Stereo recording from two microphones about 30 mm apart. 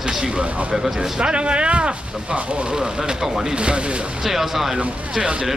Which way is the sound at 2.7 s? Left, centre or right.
Right.